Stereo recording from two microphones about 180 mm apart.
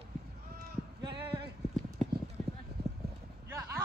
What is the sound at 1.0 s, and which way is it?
Clip-clop, 25° right (ahead or behind).